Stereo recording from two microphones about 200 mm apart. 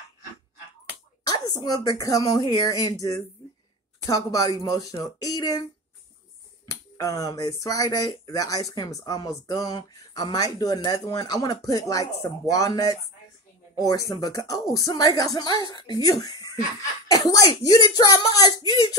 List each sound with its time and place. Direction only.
1.2 s a woman's voice: 20° left (ahead or behind)
6.7 s a woman's voice: 15° left (ahead or behind)